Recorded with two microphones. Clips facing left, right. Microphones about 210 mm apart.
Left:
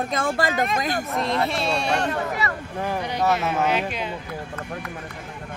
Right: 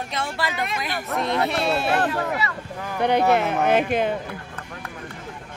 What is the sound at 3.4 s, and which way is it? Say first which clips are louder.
Speech: right 3 dB; 55° right (ahead or behind).